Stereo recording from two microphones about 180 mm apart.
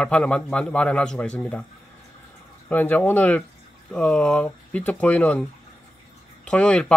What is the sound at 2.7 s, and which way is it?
Speech, 10° left (ahead or behind).